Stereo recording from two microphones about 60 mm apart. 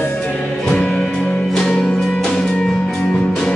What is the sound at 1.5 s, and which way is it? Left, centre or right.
Music, centre.